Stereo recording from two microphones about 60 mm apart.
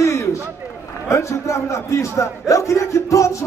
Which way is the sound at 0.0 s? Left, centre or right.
Left.